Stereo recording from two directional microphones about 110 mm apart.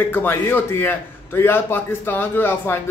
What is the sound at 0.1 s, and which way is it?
A man's voice, 20° left (ahead or behind).